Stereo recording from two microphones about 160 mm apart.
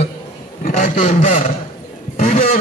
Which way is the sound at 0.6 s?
45° left (ahead or behind).